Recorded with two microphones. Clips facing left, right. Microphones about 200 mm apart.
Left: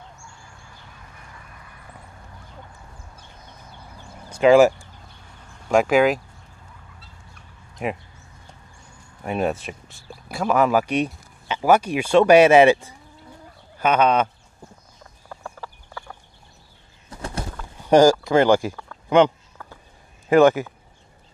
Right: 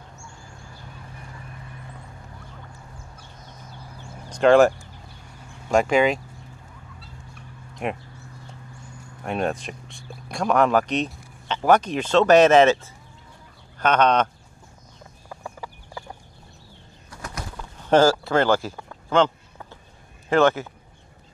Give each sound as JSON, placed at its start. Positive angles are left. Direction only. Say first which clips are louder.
{"t": 4.3, "sound": "speech", "louder": "left 2 dB", "side_deg": 5}
{"t": 7.7, "sound": "a sound", "louder": "left 1 dB", "side_deg": 0}
{"t": 9.2, "sound": "speech", "louder": "left 2 dB", "side_deg": 5}
{"t": 15.2, "sound": "horse", "louder": "even", "side_deg": -15}
{"t": 17.1, "sound": "bird", "louder": "left 5 dB", "side_deg": 30}
{"t": 17.7, "sound": "a sound", "louder": "left 3 dB", "side_deg": 15}
{"t": 18.2, "sound": "speech", "louder": "left 4 dB", "side_deg": 15}